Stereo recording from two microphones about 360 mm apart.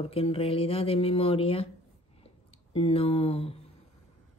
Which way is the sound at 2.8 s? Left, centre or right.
Centre.